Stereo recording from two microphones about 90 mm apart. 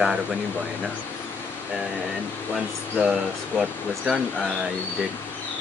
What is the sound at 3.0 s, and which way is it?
Speech, 5° right (ahead or behind).